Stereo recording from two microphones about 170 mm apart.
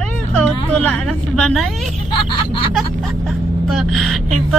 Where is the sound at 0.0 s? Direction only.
5° left (ahead or behind).